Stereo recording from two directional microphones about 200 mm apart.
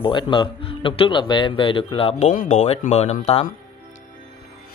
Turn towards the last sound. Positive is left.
turn(degrees=30)  # may be behind; listen again after turning